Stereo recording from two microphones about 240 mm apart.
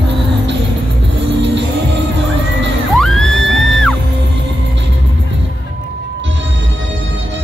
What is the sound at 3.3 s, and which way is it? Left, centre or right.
Music, right.